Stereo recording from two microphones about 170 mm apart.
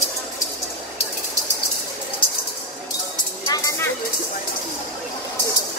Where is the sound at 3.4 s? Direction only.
20° left (ahead or behind).